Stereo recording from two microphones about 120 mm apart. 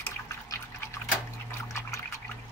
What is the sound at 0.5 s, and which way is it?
Liquid, 20° left (ahead or behind).